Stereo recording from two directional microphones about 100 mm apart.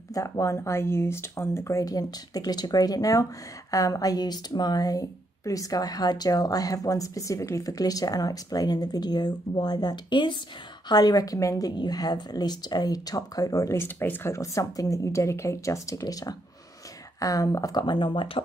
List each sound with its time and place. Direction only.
0.1 s speech: 30° left (ahead or behind)
13.7 s speech: 20° left (ahead or behind)
14.3 s speech: 30° left (ahead or behind); by 18.4 s 55° left (ahead or behind)